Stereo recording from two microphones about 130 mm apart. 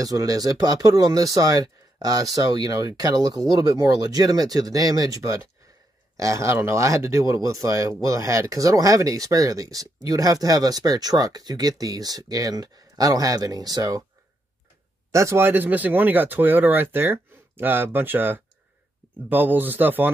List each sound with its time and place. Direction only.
0.0 s speech: 30° right (ahead or behind)
15.0 s speech: 20° right (ahead or behind)